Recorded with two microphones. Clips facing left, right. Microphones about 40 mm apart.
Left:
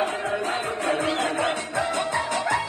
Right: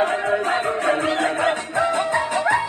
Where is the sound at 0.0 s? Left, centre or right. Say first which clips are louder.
Right 5 dB; right.